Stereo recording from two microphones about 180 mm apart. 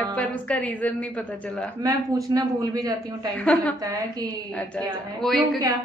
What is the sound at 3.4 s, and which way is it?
Speech, 10° left (ahead or behind).